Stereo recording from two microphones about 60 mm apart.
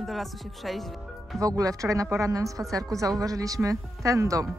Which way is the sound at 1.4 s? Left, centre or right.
Right.